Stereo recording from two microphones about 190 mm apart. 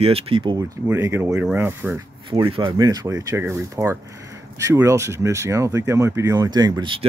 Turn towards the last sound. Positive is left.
turn(degrees=-25)  # may be behind; listen again after turning